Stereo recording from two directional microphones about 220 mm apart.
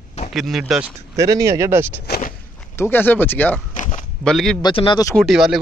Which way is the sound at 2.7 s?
10° left (ahead or behind).